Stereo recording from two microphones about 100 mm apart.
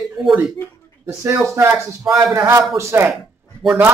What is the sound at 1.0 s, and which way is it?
Speech, 30° right (ahead or behind).